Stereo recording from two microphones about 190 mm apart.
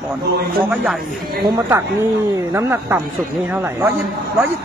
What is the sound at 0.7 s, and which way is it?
A woman's voice, 10° right (ahead or behind).